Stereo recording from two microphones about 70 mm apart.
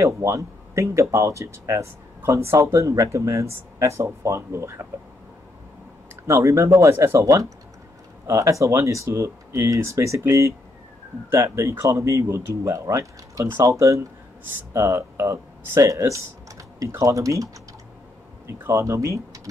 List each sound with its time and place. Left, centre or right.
0.0 s speech: right
6.2 s speech: right
18.5 s speech: right